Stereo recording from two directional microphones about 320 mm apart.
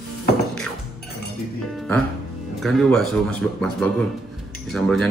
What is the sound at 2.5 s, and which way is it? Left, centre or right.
Speech, centre.